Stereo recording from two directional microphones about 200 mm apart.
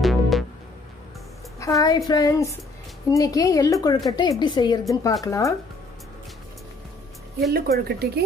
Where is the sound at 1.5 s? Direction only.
15° left (ahead or behind).